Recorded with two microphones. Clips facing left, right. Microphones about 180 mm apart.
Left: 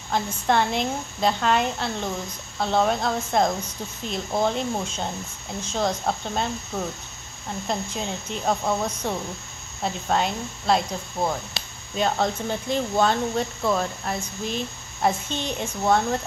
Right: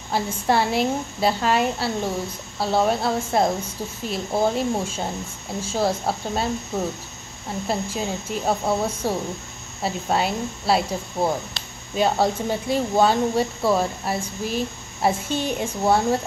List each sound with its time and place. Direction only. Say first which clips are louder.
0.1 s speech: right 1 dB; 5° right (ahead or behind)
7.6 s speech: right 3 dB; 5° right (ahead or behind)